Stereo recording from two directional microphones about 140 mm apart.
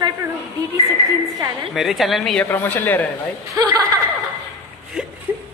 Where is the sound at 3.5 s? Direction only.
25° right (ahead or behind).